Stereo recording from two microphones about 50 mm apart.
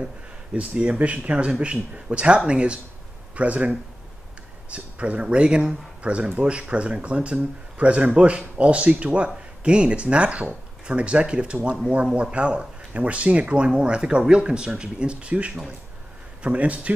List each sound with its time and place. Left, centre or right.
0.0 s speech: right
4.7 s speech: right